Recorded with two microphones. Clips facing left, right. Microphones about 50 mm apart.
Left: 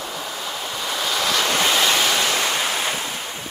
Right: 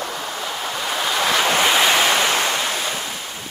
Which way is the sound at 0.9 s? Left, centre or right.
Right.